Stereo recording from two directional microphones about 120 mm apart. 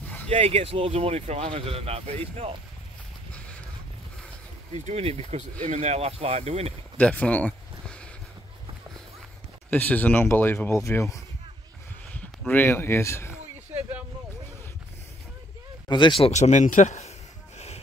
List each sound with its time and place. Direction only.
0.3 s speech: 60° right (ahead or behind)
3.3 s a sound: 10° left (ahead or behind)
4.7 s speech: 60° right (ahead or behind)
7.0 s a sound: 10° left (ahead or behind)
9.7 s speech: 15° left (ahead or behind)
12.1 s speech: 15° left (ahead or behind)
15.9 s speech: 40° left (ahead or behind)
16.3 s speech: 70° left (ahead or behind)